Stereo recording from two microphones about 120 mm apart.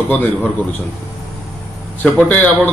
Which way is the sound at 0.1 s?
10° left (ahead or behind).